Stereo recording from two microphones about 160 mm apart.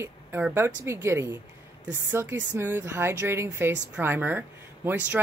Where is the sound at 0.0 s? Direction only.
15° right (ahead or behind).